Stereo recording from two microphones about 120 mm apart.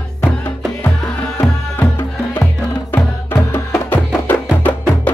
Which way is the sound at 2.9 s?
20° left (ahead or behind).